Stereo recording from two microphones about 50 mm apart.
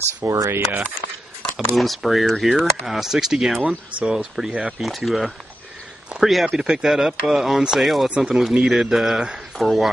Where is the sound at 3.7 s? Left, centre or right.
Centre.